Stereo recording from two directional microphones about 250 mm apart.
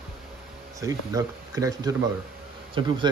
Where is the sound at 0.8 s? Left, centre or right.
Centre.